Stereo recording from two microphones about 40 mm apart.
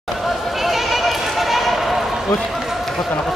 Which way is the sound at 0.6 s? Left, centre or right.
Centre.